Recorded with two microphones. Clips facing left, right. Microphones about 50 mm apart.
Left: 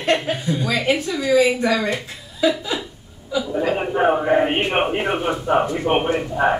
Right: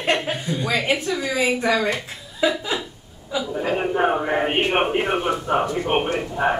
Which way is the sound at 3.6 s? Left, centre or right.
Centre.